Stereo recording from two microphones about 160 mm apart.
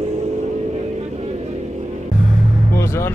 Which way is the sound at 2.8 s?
15° left (ahead or behind).